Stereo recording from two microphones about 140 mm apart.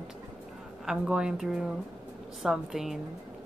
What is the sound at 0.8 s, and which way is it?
Speech, 5° right (ahead or behind).